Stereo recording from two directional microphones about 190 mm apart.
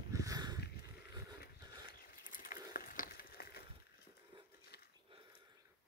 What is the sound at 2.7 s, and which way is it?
Frying, 50° left (ahead or behind).